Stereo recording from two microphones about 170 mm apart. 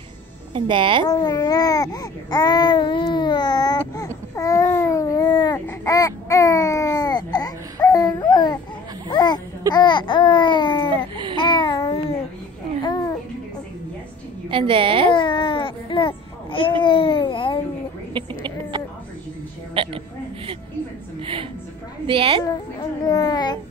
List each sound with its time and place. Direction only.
0.5 s speech: 30° right (ahead or behind)
1.0 s speech: 25° left (ahead or behind)
4.4 s babbling: 20° left (ahead or behind)
9.1 s a sound: 25° left (ahead or behind)
9.7 s speech: 25° left (ahead or behind)
11.3 s babbling: 30° left (ahead or behind)
12.8 s a sound: 25° left (ahead or behind)
14.5 s a woman's voice: 30° right (ahead or behind)
15.1 s baby cry: 30° left (ahead or behind)
16.8 s babbling: 30° left (ahead or behind)
19.7 s a sound: 30° right (ahead or behind)
21.2 s a woman's voice: 30° right (ahead or behind)
22.4 s a child's voice: 20° left (ahead or behind)